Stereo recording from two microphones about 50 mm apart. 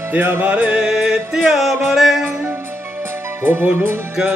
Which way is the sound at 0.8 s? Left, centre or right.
Centre.